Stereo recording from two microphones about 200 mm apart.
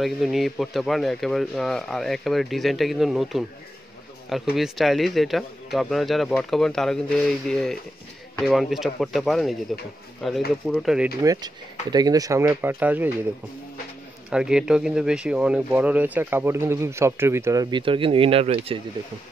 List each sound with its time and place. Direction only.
0.0 s a man's voice: centre (ahead or behind)
11.9 s speech: 20° right (ahead or behind)
14.3 s speech: 5° right (ahead or behind); by 18.8 s 30° right (ahead or behind)